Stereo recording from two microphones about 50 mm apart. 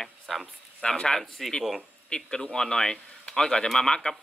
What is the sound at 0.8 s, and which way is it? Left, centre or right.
A man's voice, centre.